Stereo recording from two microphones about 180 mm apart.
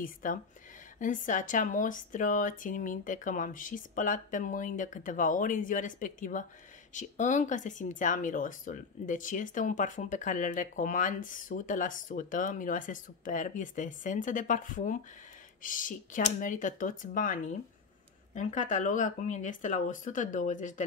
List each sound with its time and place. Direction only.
0.0 s speech: 50° left (ahead or behind)